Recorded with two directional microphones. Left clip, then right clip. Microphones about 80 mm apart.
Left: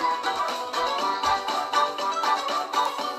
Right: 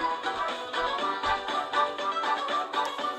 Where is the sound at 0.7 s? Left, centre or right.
Centre.